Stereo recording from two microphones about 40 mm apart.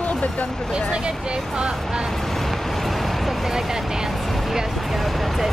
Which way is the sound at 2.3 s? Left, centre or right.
Centre.